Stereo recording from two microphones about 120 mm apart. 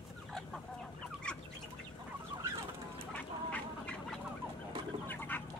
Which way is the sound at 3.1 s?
10° left (ahead or behind).